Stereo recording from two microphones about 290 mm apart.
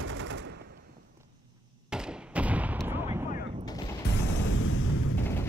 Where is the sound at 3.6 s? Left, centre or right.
Centre.